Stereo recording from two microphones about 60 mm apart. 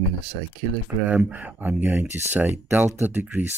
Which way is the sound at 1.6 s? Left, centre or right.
Right.